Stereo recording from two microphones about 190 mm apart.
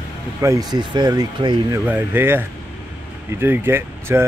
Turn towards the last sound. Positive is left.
turn(degrees=-10)  # may be behind; listen again after turning